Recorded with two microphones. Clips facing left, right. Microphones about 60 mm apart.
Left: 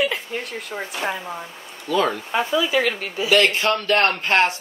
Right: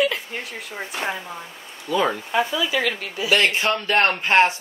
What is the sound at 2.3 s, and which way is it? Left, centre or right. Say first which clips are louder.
Speech: left 1 dB; left.